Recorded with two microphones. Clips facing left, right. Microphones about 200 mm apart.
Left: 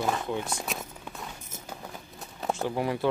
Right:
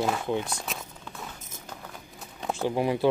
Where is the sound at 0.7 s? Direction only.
Centre (ahead or behind).